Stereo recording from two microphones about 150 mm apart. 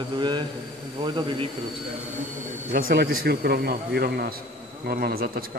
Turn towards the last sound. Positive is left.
turn(degrees=-80)